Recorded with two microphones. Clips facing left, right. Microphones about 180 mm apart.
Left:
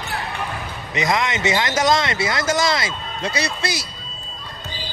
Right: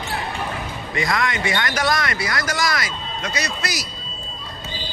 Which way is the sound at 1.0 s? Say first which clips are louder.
Left 2 dB; 20° left (ahead or behind).